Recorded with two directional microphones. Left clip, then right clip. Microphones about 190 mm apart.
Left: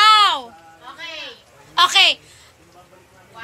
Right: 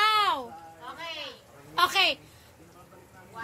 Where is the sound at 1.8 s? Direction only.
Centre (ahead or behind).